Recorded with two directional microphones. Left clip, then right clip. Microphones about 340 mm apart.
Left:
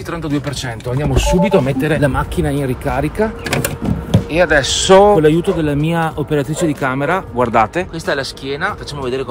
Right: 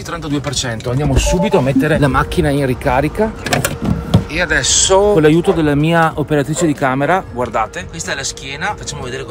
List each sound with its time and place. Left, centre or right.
1.1 s speech: centre
7.3 s speech: left
8.1 s speech: centre